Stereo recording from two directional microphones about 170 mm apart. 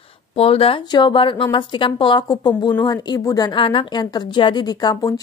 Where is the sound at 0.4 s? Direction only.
35° left (ahead or behind).